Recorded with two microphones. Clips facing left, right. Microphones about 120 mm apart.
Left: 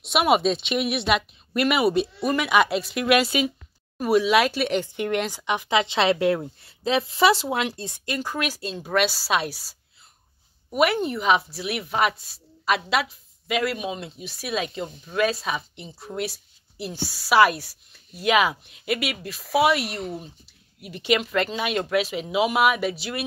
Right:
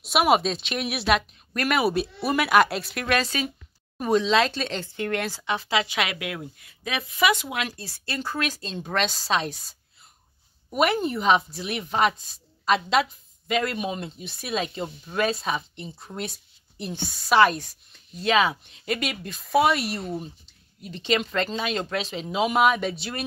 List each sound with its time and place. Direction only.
0.0 s speech: centre (ahead or behind)
3.1 s speech: 10° left (ahead or behind); by 7.6 s 30° left (ahead or behind)
7.6 s speech: 20° left (ahead or behind)